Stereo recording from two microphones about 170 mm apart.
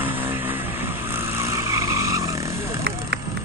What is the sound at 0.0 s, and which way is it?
Vehicle, 10° right (ahead or behind).